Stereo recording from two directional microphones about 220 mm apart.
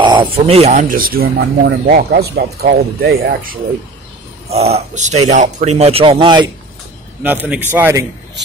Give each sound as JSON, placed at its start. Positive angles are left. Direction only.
{"t": 0.0, "sound": "speech", "side_deg": -20}
{"t": 4.5, "sound": "speech", "side_deg": -30}
{"t": 7.2, "sound": "a man's voice", "side_deg": -10}